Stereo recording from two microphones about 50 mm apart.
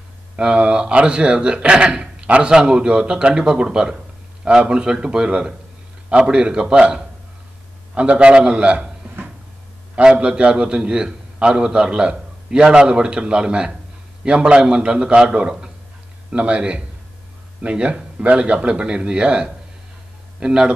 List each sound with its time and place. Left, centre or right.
0.4 s a man's voice: centre
10.0 s a man's voice: right
16.3 s a man's voice: right